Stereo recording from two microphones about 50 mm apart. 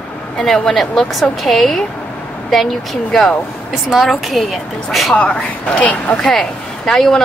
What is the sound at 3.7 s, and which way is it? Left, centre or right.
A woman's voice, centre.